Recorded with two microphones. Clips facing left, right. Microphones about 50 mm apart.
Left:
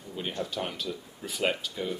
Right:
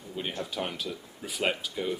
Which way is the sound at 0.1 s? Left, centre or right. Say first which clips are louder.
Left 1 dB; centre.